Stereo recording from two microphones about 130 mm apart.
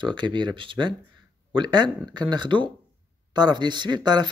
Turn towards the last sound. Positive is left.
turn(degrees=-35)  # may be behind; listen again after turning